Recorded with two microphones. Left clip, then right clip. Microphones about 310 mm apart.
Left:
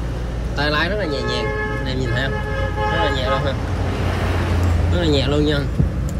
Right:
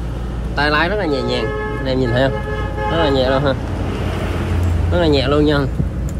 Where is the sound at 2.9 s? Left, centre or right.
Right.